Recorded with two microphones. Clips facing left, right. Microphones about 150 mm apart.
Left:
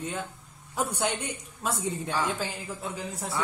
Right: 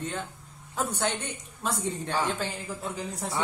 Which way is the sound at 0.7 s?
10° left (ahead or behind).